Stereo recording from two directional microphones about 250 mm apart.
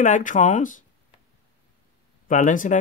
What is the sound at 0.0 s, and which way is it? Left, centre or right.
Speech, left.